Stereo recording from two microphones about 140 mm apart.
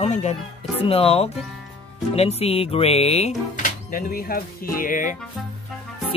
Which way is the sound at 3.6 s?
90° left.